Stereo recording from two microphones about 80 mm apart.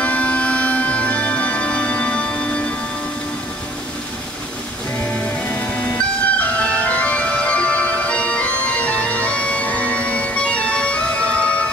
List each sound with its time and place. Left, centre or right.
0.0 s music: centre
5.9 s music: centre